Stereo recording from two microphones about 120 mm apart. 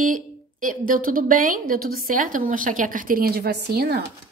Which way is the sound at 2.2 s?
90° right.